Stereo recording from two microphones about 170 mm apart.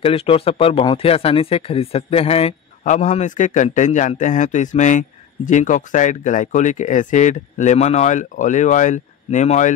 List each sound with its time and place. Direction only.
0.0 s a man's voice: 35° left (ahead or behind)